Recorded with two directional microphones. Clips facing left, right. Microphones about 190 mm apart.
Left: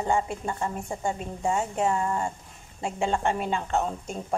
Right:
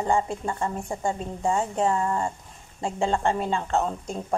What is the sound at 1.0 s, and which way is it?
A woman's voice, 30° right (ahead or behind).